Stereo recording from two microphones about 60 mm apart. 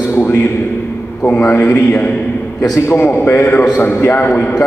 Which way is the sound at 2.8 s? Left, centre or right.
Left.